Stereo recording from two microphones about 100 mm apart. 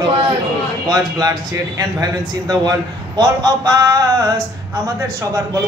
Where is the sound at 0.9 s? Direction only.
40° right (ahead or behind).